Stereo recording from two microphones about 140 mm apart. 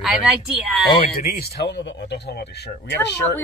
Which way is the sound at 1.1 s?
90° left.